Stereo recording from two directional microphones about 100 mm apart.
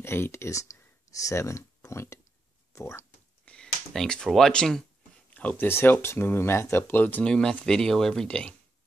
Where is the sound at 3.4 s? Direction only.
10° left (ahead or behind).